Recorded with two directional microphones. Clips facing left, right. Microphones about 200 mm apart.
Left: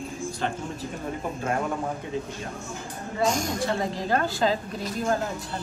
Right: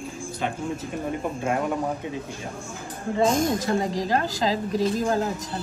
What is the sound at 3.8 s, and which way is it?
Speech, 40° right (ahead or behind).